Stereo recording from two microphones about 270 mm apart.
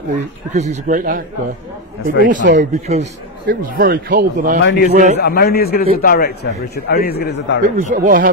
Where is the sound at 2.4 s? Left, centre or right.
Right.